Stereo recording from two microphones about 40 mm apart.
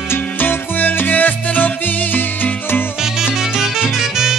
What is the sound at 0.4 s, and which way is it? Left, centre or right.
Music, left.